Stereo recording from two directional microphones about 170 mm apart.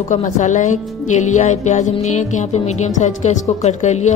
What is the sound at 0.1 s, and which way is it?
Speech, 45° left (ahead or behind).